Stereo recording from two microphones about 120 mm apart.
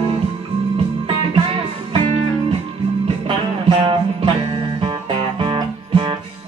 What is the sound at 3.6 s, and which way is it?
Music, 45° right (ahead or behind).